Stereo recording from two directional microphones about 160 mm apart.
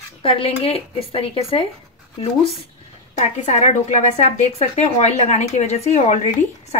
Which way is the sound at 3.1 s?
45° left (ahead or behind).